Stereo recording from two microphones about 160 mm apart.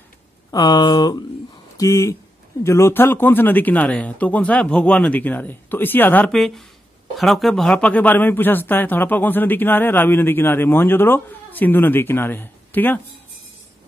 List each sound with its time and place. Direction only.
0.5 s speech: 25° left (ahead or behind)